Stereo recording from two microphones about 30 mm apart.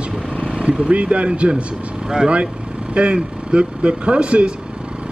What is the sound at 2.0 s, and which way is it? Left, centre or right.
Speech, right.